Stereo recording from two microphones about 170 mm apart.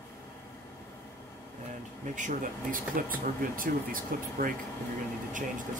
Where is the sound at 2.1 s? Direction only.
50° right (ahead or behind).